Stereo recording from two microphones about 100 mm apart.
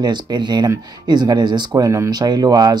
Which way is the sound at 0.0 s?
45° right (ahead or behind).